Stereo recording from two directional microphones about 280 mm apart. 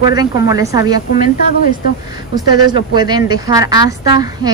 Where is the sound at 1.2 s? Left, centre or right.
Left.